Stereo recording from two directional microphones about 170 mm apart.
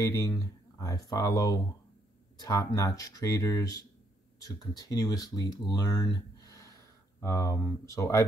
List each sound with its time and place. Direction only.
0.0 s speech: 20° left (ahead or behind)